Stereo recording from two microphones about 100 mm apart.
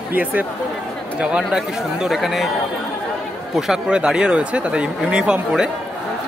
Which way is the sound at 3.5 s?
5° right (ahead or behind).